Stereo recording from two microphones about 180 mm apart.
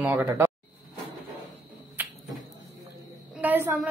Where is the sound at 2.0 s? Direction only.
10° right (ahead or behind).